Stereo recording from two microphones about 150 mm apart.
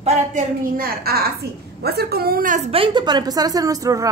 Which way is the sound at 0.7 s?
85° right.